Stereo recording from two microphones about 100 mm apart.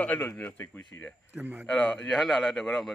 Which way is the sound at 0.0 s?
15° left (ahead or behind).